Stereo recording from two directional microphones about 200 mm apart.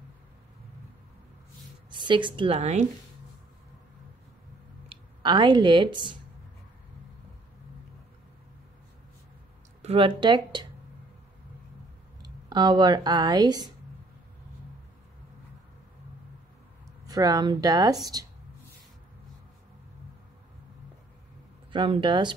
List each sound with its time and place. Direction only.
1.9 s a woman's voice: 25° right (ahead or behind)
4.8 s speech: 25° right (ahead or behind)
9.8 s a woman's voice: 30° right (ahead or behind)
12.2 s speech: 20° right (ahead or behind)
17.0 s a woman's voice: 20° right (ahead or behind)
21.7 s a woman's voice: 25° right (ahead or behind)